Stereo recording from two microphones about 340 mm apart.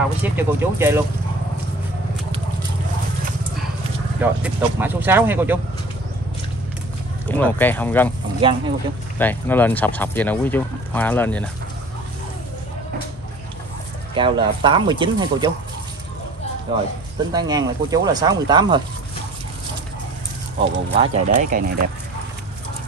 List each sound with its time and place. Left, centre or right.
0.2 s speech: centre
4.2 s speech: centre
7.2 s speech: centre
8.4 s speech: centre
9.2 s speech: centre
14.1 s speech: centre
17.3 s speech: centre
20.9 s speech: centre